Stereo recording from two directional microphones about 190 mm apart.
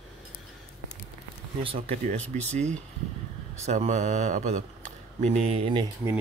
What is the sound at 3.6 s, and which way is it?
Speech, 35° right (ahead or behind).